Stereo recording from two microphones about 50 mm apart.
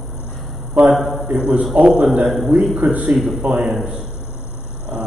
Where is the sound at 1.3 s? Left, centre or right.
Right.